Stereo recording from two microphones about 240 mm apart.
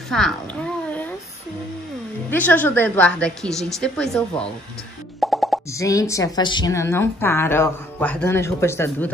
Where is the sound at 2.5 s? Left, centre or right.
Centre.